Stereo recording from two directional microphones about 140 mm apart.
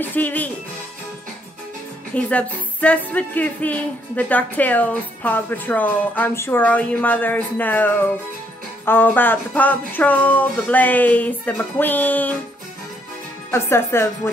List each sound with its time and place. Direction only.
0.0 s a woman's voice: 10° left (ahead or behind)
2.1 s a woman's voice: 10° left (ahead or behind)
13.5 s a woman's voice: 20° left (ahead or behind)